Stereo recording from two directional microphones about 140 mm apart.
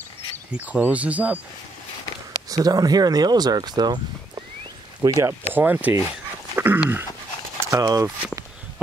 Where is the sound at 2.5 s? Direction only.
25° right (ahead or behind).